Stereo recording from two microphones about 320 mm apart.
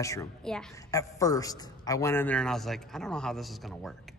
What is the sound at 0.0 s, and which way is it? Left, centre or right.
A man's voice, centre.